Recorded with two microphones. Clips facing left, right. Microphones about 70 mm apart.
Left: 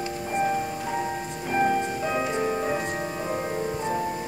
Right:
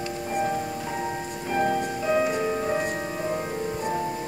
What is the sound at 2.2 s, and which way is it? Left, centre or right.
Music, centre.